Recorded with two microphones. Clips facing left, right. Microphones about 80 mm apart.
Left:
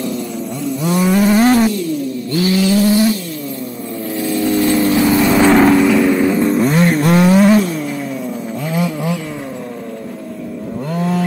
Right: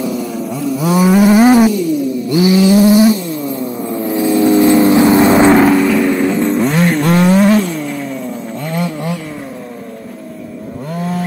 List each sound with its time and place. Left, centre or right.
0.0 s a sound: centre
3.9 s vehicle: centre
5.5 s vehicle: centre